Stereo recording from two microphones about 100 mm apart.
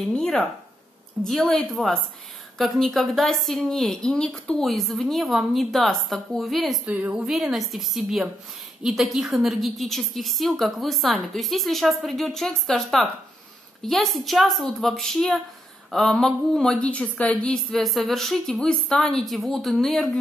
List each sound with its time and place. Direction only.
0.0 s a woman's voice: 10° left (ahead or behind)
6.9 s a woman's voice: 15° right (ahead or behind)
7.2 s a woman's voice: centre (ahead or behind)